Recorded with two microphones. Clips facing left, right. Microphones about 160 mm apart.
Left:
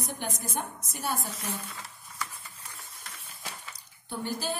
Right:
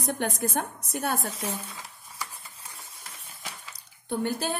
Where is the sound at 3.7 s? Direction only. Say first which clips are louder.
Right 10 dB; 60° right (ahead or behind).